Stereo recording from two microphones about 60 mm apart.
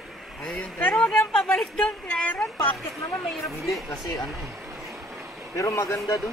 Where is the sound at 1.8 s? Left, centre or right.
Left.